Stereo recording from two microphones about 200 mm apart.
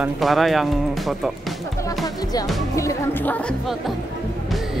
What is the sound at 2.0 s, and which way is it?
Speech, 20° left (ahead or behind).